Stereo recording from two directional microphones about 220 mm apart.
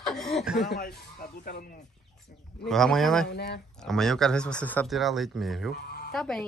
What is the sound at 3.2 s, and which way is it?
Speech, 45° left (ahead or behind).